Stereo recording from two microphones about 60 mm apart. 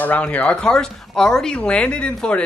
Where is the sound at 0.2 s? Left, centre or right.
Left.